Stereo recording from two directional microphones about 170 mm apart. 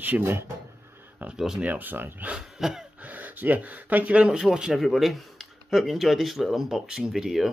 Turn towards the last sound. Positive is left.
turn(degrees=0)  # may be behind; listen again after turning